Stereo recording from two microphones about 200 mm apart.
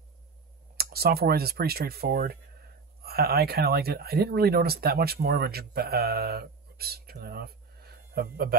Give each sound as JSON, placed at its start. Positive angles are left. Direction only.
{"t": 0.7, "sound": "speech", "side_deg": -50}